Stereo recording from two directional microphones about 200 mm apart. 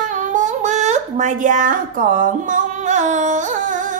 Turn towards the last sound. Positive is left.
turn(degrees=-40)  # may be behind; listen again after turning